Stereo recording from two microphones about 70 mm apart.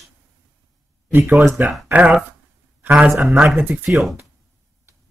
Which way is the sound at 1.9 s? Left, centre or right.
Right.